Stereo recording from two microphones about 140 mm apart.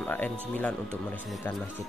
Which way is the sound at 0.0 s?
15° left (ahead or behind).